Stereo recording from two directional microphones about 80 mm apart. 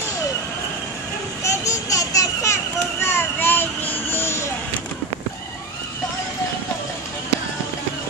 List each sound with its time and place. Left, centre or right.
1.4 s a child's voice: left